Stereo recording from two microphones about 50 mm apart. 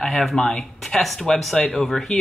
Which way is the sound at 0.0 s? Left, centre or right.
Centre.